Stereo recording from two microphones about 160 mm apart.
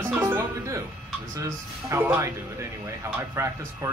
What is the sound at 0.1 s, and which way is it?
Music, 15° right (ahead or behind).